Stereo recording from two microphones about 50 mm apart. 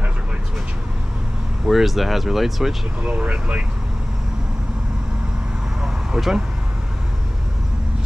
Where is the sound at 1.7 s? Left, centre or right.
Centre.